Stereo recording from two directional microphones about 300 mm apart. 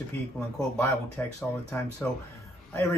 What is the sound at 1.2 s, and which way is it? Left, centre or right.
Speech, centre.